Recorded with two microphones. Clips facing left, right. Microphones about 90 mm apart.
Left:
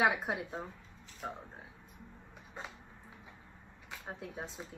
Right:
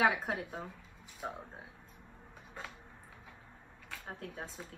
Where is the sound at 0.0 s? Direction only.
15° left (ahead or behind).